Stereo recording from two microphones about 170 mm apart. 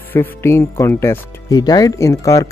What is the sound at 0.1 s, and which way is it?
Speech, 15° left (ahead or behind).